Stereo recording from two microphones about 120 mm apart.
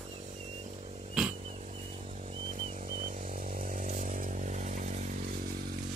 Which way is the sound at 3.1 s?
90° right.